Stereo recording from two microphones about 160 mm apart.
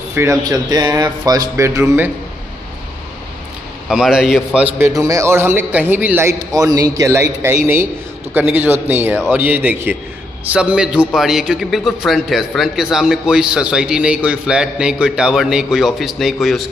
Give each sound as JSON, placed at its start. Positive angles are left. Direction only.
{"t": 0.1, "sound": "speech", "side_deg": -20}
{"t": 3.9, "sound": "a man's voice", "side_deg": -5}